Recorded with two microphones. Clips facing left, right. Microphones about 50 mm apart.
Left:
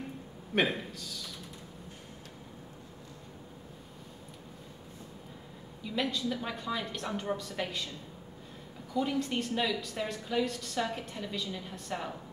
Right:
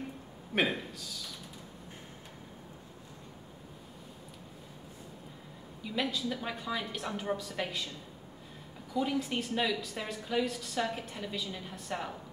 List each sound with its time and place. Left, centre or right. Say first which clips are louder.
0.6 s a man's voice: left 1 dB; centre
5.8 s a woman's voice: left 1 dB; centre
8.9 s a woman's voice: left 1 dB; centre